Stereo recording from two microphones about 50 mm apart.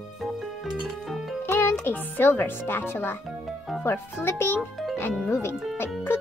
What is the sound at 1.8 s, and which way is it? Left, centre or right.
Speech, left.